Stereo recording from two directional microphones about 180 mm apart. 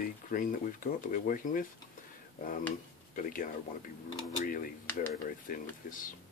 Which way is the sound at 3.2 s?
50° left (ahead or behind).